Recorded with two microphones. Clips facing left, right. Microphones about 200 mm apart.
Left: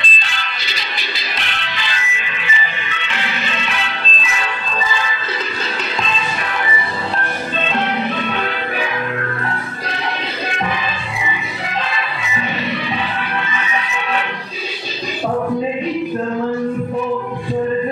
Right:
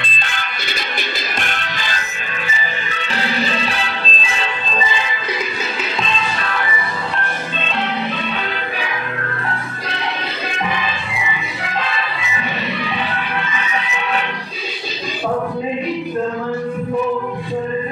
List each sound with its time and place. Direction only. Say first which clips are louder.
0.0 s music: right 1 dB; 55° right (ahead or behind); by 5.0 s 20° right (ahead or behind)